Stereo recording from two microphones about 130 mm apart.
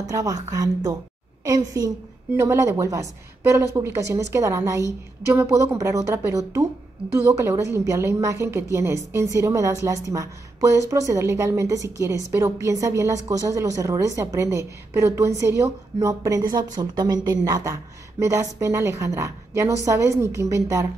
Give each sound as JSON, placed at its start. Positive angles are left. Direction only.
{"t": 0.1, "sound": "a woman's voice", "side_deg": -25}